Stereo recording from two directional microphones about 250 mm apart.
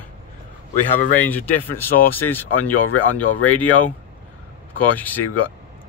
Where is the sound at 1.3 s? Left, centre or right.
Centre.